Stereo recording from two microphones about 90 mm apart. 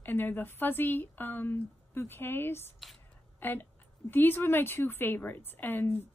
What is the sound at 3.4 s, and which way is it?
A woman's voice, 20° left (ahead or behind).